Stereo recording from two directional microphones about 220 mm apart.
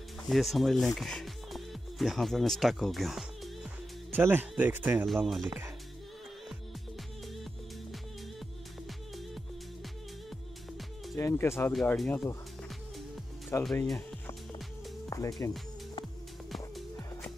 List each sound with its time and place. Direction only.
0.3 s speech: centre (ahead or behind)
11.1 s speech: 10° left (ahead or behind)
13.7 s speech: centre (ahead or behind)
15.0 s music: 15° left (ahead or behind)
16.5 s music: centre (ahead or behind)